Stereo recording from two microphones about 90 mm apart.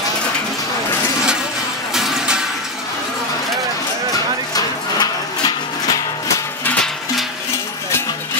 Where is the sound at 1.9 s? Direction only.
5° right (ahead or behind).